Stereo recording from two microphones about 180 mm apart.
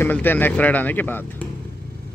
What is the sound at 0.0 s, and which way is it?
Speech, 10° left (ahead or behind).